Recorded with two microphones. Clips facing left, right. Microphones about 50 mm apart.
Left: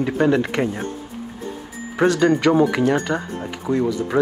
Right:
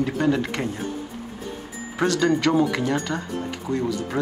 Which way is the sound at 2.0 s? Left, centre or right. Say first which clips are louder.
Left 4 dB; left.